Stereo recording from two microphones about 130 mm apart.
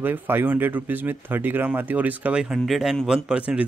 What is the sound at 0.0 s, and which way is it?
Speech, 15° right (ahead or behind).